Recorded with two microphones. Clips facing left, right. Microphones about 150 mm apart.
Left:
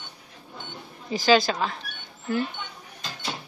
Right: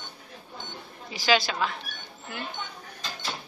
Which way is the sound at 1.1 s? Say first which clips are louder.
Left 5 dB; 45° left (ahead or behind).